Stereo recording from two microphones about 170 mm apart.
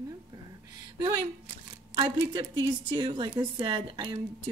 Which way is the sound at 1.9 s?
30° right (ahead or behind).